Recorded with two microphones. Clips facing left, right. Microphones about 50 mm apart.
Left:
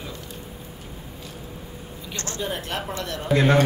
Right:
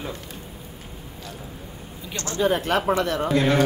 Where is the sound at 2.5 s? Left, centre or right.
Right.